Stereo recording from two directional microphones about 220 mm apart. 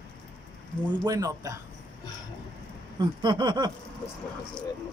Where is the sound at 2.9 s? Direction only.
20° right (ahead or behind).